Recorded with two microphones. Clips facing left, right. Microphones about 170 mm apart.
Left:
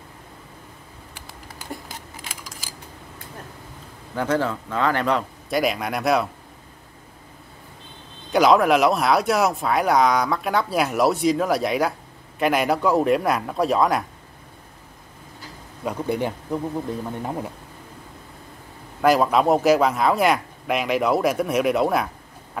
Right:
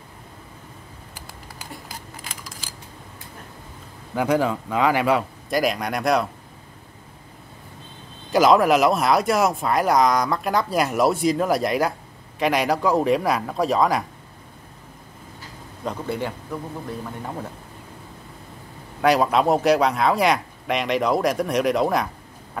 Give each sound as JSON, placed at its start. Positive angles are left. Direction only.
{"t": 2.2, "sound": "scissors", "side_deg": 5}
{"t": 4.1, "sound": "a man's voice", "side_deg": -10}
{"t": 8.3, "sound": "speech", "side_deg": 0}
{"t": 15.8, "sound": "speech", "side_deg": 15}
{"t": 18.9, "sound": "speech", "side_deg": 0}